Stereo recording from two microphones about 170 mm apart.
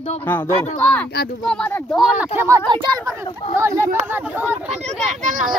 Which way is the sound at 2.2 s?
15° right (ahead or behind).